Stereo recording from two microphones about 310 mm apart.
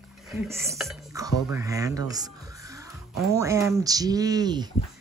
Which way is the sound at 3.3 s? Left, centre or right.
Centre.